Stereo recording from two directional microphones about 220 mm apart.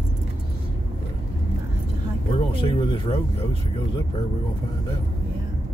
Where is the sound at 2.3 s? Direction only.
25° left (ahead or behind).